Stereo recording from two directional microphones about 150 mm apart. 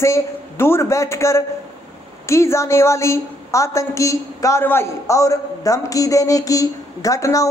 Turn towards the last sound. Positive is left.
turn(degrees=20)  # may be behind; listen again after turning